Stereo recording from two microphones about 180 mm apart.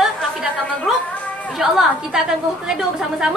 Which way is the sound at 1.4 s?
Centre (ahead or behind).